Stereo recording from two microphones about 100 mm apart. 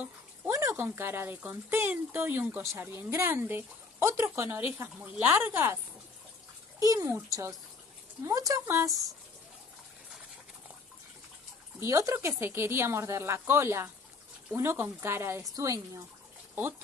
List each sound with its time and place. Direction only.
0.5 s speech: 30° right (ahead or behind)
6.8 s speech: 35° right (ahead or behind)
11.8 s speech: 30° right (ahead or behind)